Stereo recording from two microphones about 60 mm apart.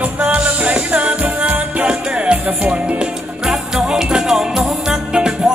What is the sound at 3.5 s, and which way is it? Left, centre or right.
Music, centre.